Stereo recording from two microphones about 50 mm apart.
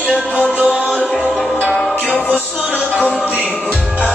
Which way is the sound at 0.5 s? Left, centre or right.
Right.